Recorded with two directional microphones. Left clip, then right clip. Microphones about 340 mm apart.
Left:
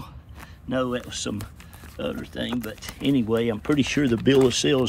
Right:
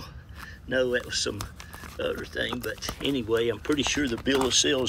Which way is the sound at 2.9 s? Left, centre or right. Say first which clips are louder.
Left 4 dB; centre.